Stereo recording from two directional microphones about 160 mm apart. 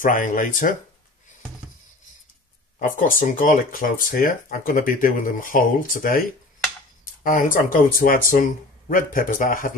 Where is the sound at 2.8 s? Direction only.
60° left (ahead or behind).